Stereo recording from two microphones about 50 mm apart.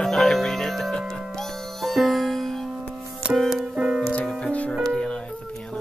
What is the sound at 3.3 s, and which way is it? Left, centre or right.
Music, centre.